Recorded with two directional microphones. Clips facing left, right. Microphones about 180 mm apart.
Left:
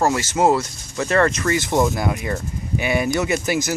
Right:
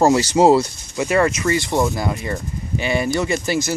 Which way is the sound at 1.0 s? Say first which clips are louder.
Right 1 dB; 10° right (ahead or behind).